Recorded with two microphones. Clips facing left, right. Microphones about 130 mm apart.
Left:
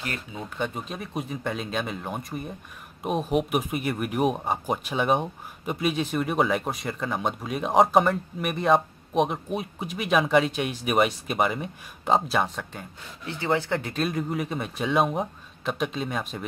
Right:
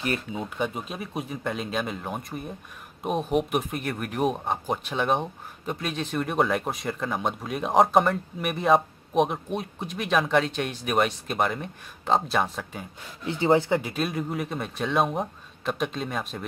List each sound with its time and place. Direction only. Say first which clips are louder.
0.0 s speech: right 6 dB; 20° right (ahead or behind)
0.4 s speech: right 1 dB; 5° right (ahead or behind)
13.2 s speech: right 5 dB; 20° right (ahead or behind); by 16.4 s centre (ahead or behind)